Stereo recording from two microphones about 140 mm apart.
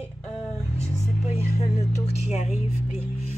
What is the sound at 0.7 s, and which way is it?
Speech, 20° right (ahead or behind).